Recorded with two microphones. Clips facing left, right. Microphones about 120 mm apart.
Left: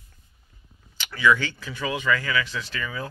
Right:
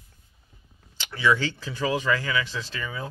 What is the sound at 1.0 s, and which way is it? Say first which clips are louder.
Speech: left 2 dB; 30° right (ahead or behind).